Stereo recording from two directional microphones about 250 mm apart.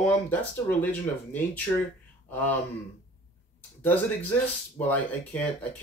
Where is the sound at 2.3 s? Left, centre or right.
Centre.